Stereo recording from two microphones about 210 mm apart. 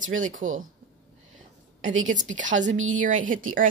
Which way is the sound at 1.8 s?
70° right (ahead or behind).